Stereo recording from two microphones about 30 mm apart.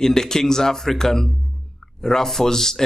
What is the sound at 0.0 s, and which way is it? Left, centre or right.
Speech, centre.